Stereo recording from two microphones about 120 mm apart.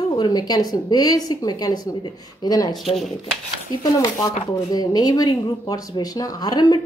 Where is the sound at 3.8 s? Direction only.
30° left (ahead or behind).